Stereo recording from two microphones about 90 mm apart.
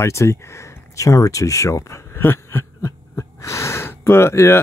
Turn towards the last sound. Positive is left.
turn(degrees=30)  # may be behind; listen again after turning